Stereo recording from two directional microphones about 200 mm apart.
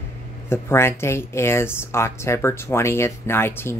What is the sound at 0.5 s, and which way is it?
Speech, 10° left (ahead or behind).